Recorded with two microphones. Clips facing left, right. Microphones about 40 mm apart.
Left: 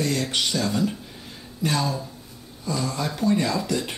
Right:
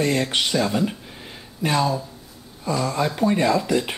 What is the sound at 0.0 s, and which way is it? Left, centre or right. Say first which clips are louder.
Speech: right 3 dB; right.